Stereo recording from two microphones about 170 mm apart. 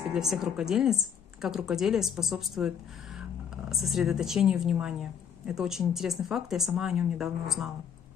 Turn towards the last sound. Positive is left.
turn(degrees=0)  # may be behind; listen again after turning